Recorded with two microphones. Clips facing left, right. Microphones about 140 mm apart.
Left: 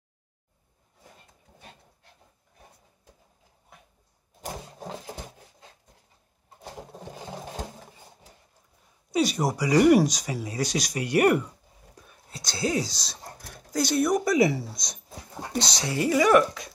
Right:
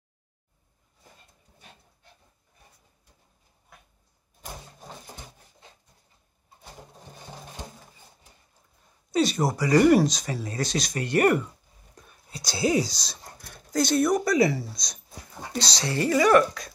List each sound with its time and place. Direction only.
4.4 s a sound: 85° left
9.1 s speech: 10° left (ahead or behind)
12.0 s whispering: centre (ahead or behind)
13.7 s speech: 10° left (ahead or behind)